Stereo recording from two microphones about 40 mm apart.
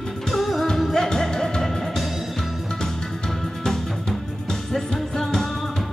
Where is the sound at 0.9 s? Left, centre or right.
Centre.